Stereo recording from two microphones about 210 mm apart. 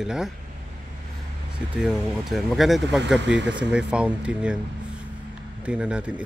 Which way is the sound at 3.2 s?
55° right (ahead or behind).